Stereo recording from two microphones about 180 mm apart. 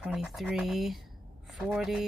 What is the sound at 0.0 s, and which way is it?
Speech, 5° right (ahead or behind).